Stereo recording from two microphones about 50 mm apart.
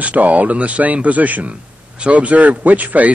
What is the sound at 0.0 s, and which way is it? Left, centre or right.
A man's voice, right.